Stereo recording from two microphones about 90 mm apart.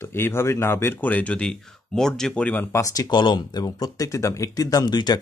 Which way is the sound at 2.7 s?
40° left (ahead or behind).